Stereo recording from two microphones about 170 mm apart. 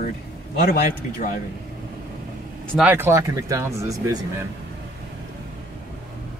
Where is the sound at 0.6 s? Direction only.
60° left (ahead or behind).